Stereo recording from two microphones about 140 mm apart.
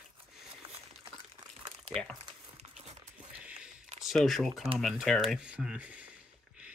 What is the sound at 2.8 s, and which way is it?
Music, 50° right (ahead or behind).